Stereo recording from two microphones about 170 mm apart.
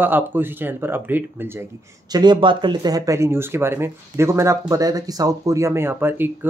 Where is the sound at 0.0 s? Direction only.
10° right (ahead or behind).